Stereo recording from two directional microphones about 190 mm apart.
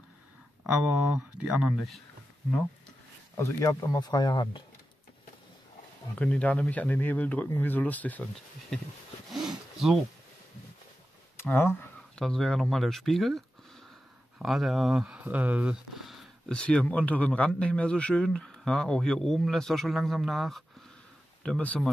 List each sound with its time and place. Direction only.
0.7 s speech: 5° right (ahead or behind)
3.3 s speech: 15° left (ahead or behind)
6.1 s speech: 5° left (ahead or behind)
11.3 s speech: 10° left (ahead or behind)
14.4 s speech: centre (ahead or behind)